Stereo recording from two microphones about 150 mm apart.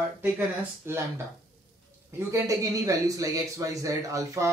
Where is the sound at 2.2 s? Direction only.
20° right (ahead or behind).